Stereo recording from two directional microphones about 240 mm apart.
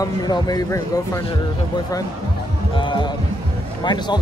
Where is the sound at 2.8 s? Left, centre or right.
Centre.